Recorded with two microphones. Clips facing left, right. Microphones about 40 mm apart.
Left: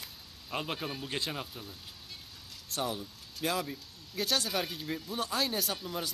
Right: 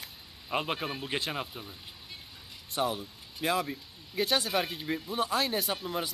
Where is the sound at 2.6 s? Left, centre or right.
Centre.